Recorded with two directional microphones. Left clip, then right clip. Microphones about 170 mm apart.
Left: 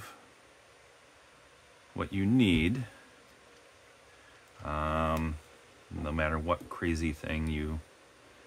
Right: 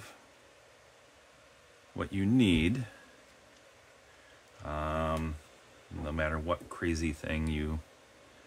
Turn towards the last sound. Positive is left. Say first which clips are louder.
# even
turn(degrees=-5)  # may be behind; listen again after turning